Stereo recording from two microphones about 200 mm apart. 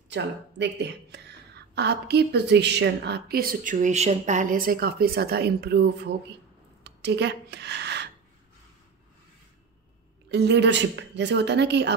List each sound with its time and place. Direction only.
0.1 s a woman's voice: 60° right (ahead or behind)
6.8 s a sound: 55° right (ahead or behind)
10.3 s a woman's voice: 60° right (ahead or behind)